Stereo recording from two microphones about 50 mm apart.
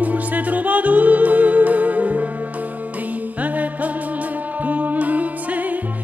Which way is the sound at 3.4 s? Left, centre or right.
Right.